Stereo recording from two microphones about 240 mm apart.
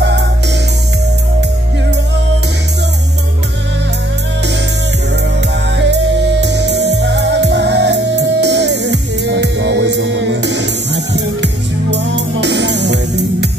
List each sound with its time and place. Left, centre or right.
5.8 s music: right